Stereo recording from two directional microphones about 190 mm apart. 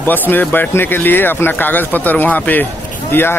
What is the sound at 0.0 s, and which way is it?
Speech, 10° left (ahead or behind).